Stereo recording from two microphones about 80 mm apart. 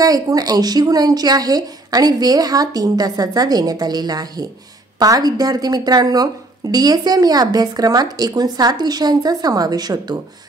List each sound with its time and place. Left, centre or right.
0.0 s speech: right